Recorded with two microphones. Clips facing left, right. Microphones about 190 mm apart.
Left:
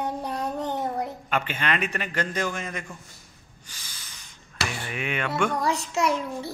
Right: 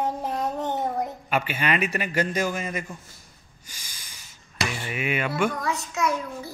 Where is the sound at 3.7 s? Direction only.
10° right (ahead or behind).